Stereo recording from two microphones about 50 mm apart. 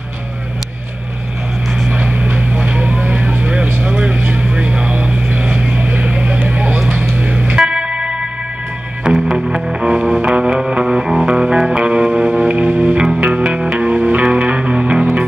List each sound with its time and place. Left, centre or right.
1.9 s vehicle: right
7.1 s music: right
7.5 s music: centre
12.4 s music: right
12.9 s music: centre
13.2 s music: right